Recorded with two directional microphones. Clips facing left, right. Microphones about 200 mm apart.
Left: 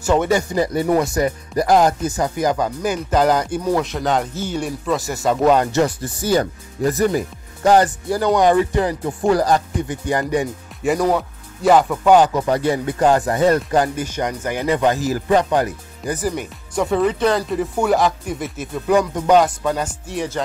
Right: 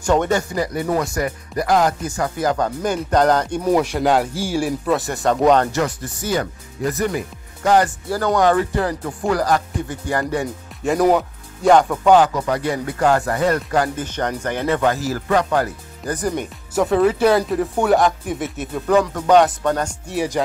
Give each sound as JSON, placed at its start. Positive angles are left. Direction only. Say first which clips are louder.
{"t": 0.0, "sound": "speech", "louder": "left 1 dB", "side_deg": 10}
{"t": 1.1, "sound": "speech", "louder": "left 4 dB", "side_deg": 25}
{"t": 3.6, "sound": "speech", "louder": "right 3 dB", "side_deg": -10}
{"t": 5.7, "sound": "speech", "louder": "left 4 dB", "side_deg": 30}
{"t": 7.8, "sound": "speech", "louder": "left 2 dB", "side_deg": 20}
{"t": 11.0, "sound": "speech", "louder": "right 5 dB", "side_deg": -10}
{"t": 11.6, "sound": "speech", "louder": "even", "side_deg": 0}
{"t": 12.1, "sound": "speech", "louder": "left 1 dB", "side_deg": 20}
{"t": 14.0, "sound": "speech", "louder": "even", "side_deg": 10}
{"t": 16.2, "sound": "speech", "louder": "right 1 dB", "side_deg": 5}
{"t": 18.9, "sound": "speech", "louder": "even", "side_deg": 10}
{"t": 20.2, "sound": "speech", "louder": "right 3 dB", "side_deg": -10}